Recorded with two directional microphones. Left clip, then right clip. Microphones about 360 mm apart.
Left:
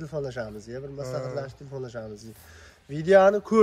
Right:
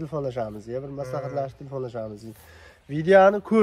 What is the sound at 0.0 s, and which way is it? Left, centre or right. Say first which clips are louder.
Speech: right 4 dB; centre.